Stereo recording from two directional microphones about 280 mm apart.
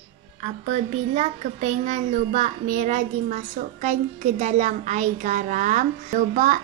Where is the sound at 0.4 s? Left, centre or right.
Right.